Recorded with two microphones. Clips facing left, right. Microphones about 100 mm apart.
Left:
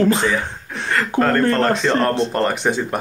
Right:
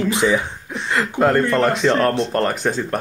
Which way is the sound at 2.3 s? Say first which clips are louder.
Left 1 dB; centre (ahead or behind).